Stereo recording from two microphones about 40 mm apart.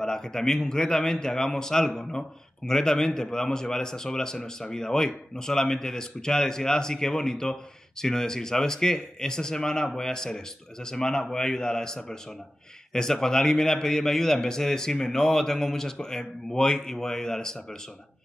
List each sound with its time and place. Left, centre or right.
0.0 s a man's voice: centre